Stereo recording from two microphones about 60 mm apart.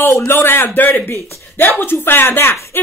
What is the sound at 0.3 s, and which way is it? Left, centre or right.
A woman's voice, left.